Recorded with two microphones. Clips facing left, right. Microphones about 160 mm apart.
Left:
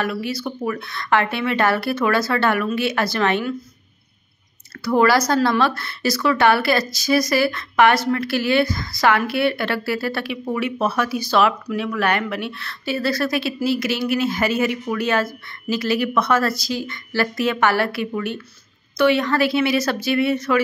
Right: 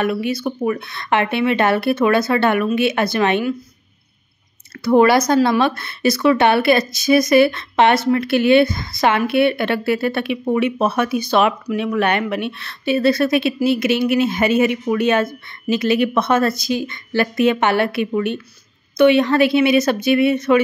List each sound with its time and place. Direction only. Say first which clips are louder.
0.0 s speech: right 4 dB; 20° right (ahead or behind)
4.8 s speech: right 4 dB; 20° right (ahead or behind)